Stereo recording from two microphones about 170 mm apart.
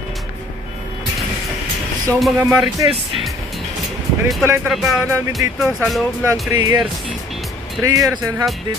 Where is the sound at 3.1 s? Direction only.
Centre (ahead or behind).